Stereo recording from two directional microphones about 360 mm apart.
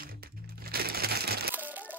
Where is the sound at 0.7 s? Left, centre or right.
Right.